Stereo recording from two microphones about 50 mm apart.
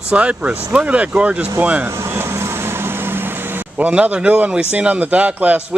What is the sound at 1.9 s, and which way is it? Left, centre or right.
Vehicle, right.